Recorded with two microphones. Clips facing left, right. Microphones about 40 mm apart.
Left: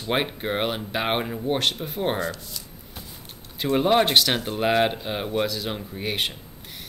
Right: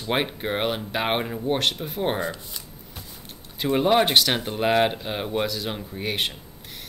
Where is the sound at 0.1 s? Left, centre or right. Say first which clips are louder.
Even; centre.